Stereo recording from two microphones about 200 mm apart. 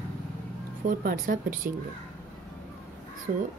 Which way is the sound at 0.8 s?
45° right (ahead or behind).